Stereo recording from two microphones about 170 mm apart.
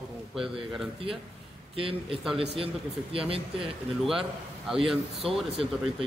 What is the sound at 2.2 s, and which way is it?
Speech, 5° right (ahead or behind).